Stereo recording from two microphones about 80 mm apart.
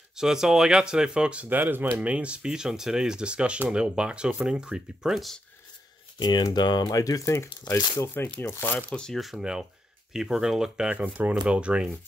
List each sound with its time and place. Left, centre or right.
0.1 s speech: centre
6.1 s speech: left
8.4 s speech: left
8.7 s speech: centre
9.2 s speech: centre